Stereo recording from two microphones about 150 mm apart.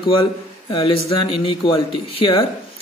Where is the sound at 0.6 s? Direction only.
35° left (ahead or behind).